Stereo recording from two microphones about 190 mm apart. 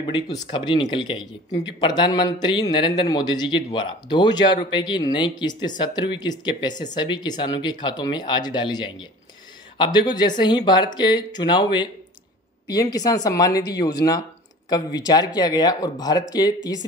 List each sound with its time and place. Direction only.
0.0 s speech: 25° left (ahead or behind)